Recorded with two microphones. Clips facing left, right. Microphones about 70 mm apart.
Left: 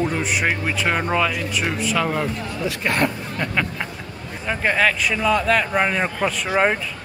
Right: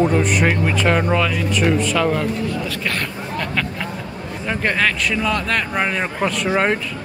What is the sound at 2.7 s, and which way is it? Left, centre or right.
Vehicle, left.